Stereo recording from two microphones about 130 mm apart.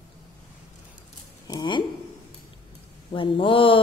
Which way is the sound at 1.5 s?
35° left (ahead or behind).